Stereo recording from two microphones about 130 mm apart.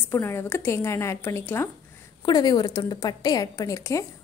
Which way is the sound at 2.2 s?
30° left (ahead or behind).